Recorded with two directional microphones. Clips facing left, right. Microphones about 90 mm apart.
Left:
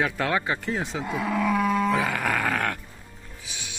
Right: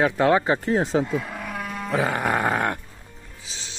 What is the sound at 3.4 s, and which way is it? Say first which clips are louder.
Music: even; 30° right (ahead or behind).